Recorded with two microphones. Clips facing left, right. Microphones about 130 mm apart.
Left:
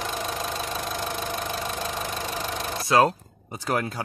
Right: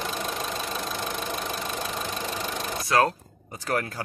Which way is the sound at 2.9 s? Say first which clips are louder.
Left 3 dB; 20° left (ahead or behind).